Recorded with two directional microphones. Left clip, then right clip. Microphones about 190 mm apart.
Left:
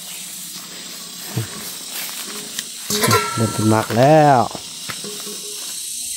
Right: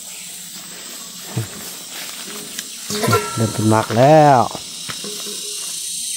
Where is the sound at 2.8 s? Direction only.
15° left (ahead or behind).